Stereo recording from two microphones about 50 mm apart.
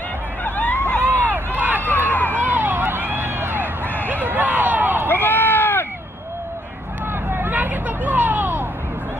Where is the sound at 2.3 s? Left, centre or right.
Right.